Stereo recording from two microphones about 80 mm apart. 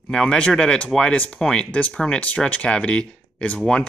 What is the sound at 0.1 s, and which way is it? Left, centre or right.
Speech, centre.